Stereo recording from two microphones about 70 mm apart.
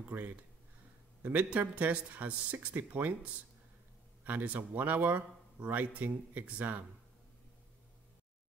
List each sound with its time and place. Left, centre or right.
1.2 s speech: centre